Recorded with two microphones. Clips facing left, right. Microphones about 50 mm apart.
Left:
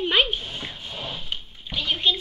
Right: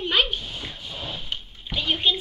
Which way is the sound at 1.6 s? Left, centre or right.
Centre.